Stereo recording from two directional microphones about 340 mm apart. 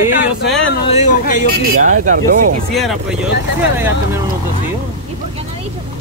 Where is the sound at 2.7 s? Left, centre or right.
Centre.